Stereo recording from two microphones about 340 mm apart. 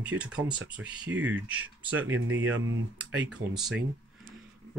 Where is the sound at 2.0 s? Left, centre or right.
Right.